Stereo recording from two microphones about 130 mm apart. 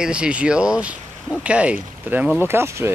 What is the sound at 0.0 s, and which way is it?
Speech, 10° right (ahead or behind).